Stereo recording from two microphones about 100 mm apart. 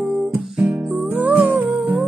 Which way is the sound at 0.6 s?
5° right (ahead or behind).